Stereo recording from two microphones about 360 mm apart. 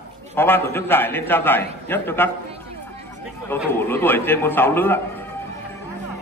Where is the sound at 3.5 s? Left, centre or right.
Centre.